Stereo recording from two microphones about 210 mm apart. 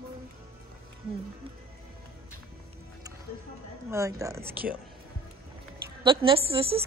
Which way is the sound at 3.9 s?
15° right (ahead or behind).